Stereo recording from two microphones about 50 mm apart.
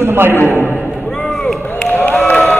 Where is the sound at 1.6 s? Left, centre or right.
Left.